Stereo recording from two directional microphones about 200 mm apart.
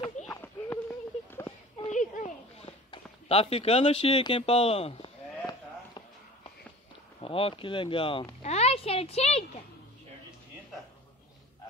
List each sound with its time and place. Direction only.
0.3 s clip-clop: 10° left (ahead or behind)
1.9 s a sound: 40° left (ahead or behind)
2.9 s speech: 30° left (ahead or behind)
7.2 s speech: 25° left (ahead or behind)